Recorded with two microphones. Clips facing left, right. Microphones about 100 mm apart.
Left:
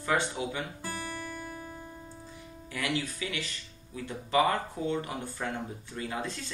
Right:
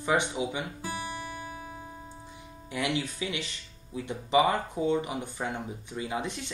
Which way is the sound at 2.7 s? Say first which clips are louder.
Right 2 dB; 20° right (ahead or behind).